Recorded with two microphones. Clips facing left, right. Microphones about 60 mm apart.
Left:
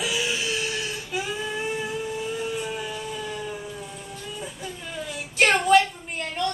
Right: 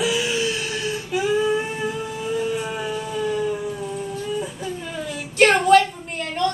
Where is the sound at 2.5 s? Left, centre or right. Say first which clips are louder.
Right 4 dB; centre.